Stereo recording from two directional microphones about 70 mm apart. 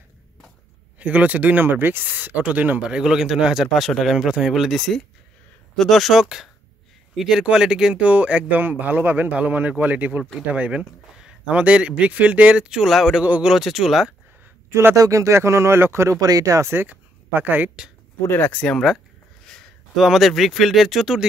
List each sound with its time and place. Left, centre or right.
0.9 s a man's voice: right; by 14.1 s centre
14.7 s speech: right
15.0 s speech: right
16.2 s speech: right
16.7 s speech: right
18.2 s speech: left
20.0 s speech: centre